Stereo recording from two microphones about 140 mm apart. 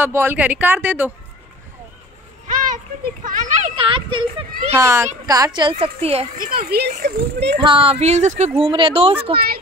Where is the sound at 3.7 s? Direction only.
40° right (ahead or behind).